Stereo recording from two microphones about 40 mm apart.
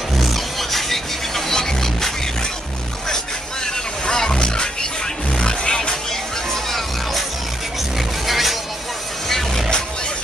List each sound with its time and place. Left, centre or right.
0.2 s music: centre
4.0 s music: centre
6.5 s music: centre
8.3 s music: centre